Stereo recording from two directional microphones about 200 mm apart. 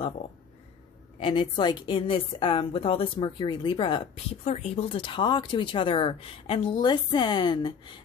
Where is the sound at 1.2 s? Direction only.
25° left (ahead or behind).